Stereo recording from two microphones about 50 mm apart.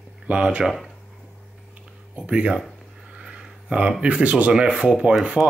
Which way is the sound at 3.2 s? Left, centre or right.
Centre.